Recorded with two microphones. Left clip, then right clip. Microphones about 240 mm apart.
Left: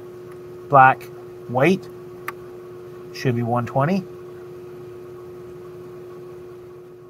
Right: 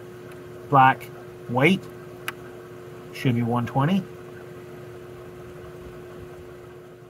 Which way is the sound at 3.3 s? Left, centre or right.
Left.